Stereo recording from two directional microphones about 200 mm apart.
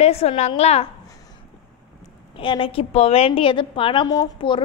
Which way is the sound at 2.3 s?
25° left (ahead or behind).